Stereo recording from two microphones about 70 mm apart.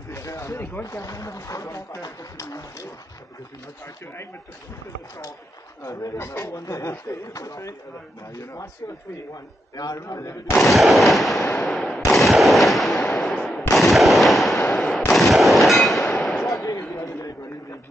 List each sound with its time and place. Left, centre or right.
0.1 s a sound: left
0.8 s speech: left
5.9 s speech: left
9.3 s a man's voice: left
9.9 s speech: left
10.6 s fireworks: centre
12.1 s gunshot: centre
13.7 s fireworks: centre
15.1 s gunshot: centre
16.9 s a sound: left